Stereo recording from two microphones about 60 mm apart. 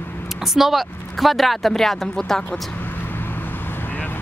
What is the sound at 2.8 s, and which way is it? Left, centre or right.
Vehicle, left.